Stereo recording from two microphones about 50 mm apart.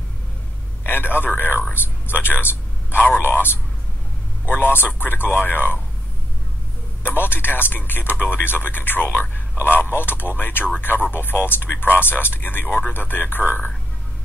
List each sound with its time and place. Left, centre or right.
0.8 s a sound: left
1.7 s speech: left
7.1 s speech: left
12.6 s speech: left
12.9 s speech: left